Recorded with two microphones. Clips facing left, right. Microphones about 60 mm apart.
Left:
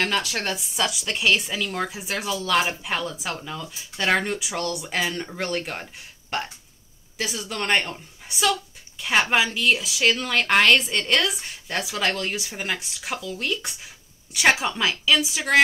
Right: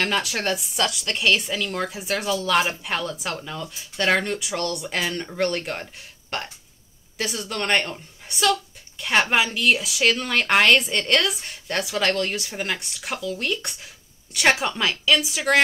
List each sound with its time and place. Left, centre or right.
0.0 s a woman's voice: centre